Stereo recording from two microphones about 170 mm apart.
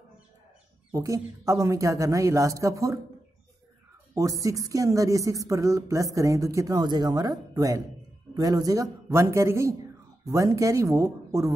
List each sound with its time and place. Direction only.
0.9 s speech: 20° right (ahead or behind)
4.1 s a man's voice: 20° right (ahead or behind)